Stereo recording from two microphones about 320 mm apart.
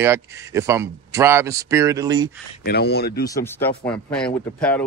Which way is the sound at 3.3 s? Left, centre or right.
Centre.